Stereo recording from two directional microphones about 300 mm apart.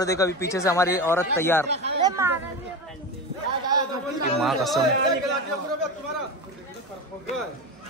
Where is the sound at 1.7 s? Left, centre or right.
Right.